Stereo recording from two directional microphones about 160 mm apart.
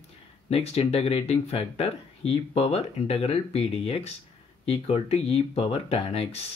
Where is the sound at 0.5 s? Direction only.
40° left (ahead or behind).